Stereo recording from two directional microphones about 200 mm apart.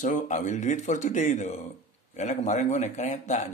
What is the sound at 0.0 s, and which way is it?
A man's voice, 40° left (ahead or behind).